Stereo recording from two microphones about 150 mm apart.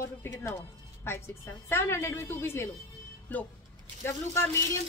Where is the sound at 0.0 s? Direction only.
15° left (ahead or behind).